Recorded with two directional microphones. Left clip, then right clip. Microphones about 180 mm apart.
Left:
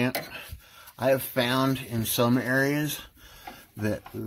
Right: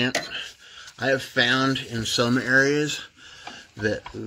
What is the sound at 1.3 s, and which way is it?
Speech, 25° left (ahead or behind).